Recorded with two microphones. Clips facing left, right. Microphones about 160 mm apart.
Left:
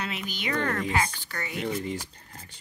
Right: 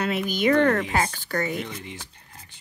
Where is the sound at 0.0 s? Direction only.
45° right (ahead or behind).